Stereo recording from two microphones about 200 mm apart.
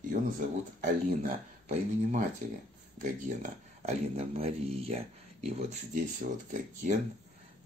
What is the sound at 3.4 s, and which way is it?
Speech, 30° right (ahead or behind).